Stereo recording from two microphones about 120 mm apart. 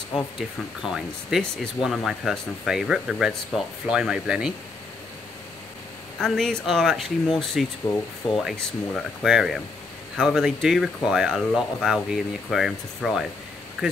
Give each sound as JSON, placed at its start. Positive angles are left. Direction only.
{"t": 0.4, "sound": "speech", "side_deg": -5}
{"t": 6.1, "sound": "speech", "side_deg": 5}
{"t": 7.9, "sound": "speech", "side_deg": 25}
{"t": 8.4, "sound": "speech", "side_deg": 0}